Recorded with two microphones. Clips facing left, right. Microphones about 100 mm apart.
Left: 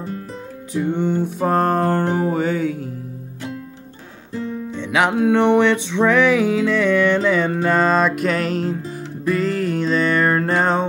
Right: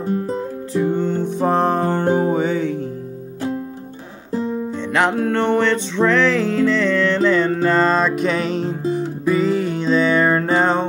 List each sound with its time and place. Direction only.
0.9 s music: 15° left (ahead or behind)
1.4 s music: centre (ahead or behind)
4.3 s music: 25° right (ahead or behind)
4.9 s music: 5° left (ahead or behind)